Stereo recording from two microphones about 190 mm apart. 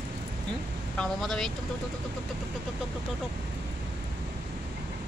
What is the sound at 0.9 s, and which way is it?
Speech, 5° left (ahead or behind).